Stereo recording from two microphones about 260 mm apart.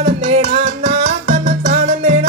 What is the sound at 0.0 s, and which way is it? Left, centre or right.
Music, right.